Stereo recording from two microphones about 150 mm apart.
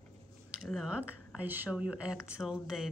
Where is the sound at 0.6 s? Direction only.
Centre (ahead or behind).